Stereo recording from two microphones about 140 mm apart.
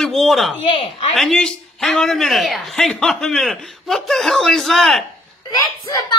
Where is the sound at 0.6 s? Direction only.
40° left (ahead or behind).